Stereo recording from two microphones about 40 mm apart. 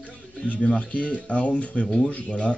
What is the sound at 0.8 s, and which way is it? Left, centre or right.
Speech, left.